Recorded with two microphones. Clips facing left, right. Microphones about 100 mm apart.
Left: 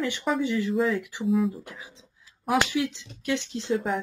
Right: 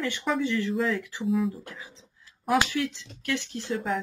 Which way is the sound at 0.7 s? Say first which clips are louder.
Left 2 dB; centre (ahead or behind).